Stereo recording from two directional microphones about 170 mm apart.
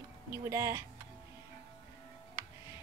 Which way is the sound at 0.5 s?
15° right (ahead or behind).